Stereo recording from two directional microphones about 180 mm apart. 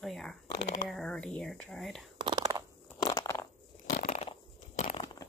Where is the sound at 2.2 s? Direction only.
25° right (ahead or behind).